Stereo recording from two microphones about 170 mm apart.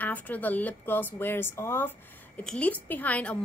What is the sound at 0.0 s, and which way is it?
A woman's voice, 10° left (ahead or behind).